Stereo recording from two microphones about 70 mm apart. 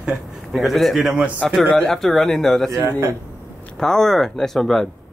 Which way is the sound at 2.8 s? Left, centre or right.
Right.